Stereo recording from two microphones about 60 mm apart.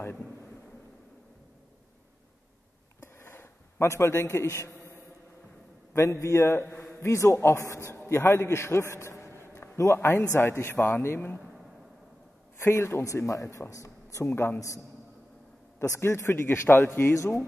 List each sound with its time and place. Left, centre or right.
3.0 s a sound: left
3.9 s speech: left
5.9 s speech: left
7.1 s speech: left
10.3 s a man's voice: left
12.5 s speech: left
13.0 s speech: left
14.3 s speech: left
16.0 s speech: left